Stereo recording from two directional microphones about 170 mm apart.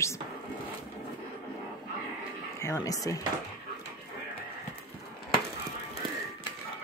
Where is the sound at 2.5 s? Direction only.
15° left (ahead or behind).